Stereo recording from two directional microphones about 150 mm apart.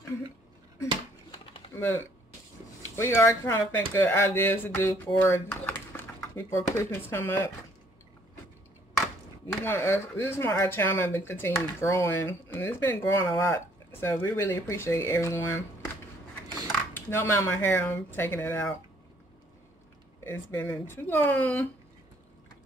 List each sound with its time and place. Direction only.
1.8 s speech: 10° left (ahead or behind)
9.6 s speech: 15° left (ahead or behind)
16.6 s speech: 15° left (ahead or behind)
20.2 s speech: 15° left (ahead or behind)